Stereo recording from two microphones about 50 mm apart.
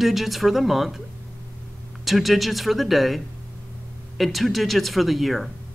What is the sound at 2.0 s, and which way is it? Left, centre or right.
Speech, centre.